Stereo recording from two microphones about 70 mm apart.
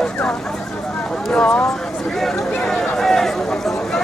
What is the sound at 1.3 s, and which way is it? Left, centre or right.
Clip-clop, centre.